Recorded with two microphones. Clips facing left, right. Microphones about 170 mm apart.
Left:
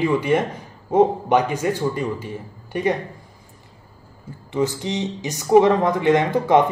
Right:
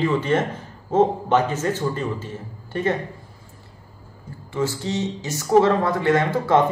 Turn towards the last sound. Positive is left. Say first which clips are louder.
# left 2 dB
turn(degrees=15)  # may be behind; listen again after turning